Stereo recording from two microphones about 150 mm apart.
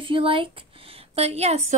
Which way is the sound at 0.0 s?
35° right (ahead or behind).